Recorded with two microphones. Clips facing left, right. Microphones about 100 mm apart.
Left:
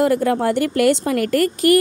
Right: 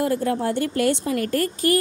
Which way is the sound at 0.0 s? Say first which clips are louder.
Left 5 dB; 80° left.